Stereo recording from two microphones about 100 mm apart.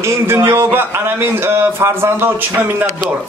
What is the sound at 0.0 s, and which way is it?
A man's voice, 25° right (ahead or behind).